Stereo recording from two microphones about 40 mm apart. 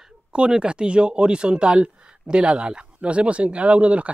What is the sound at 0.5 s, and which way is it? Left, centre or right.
Speech, right.